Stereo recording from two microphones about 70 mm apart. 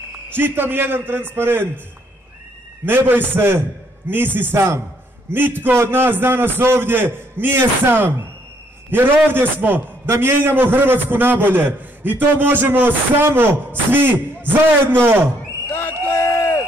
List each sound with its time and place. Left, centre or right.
0.4 s a man's voice: right
2.8 s a man's voice: right
5.3 s a man's voice: right
10.0 s a man's voice: right
15.7 s a sound: left
16.2 s a sound: left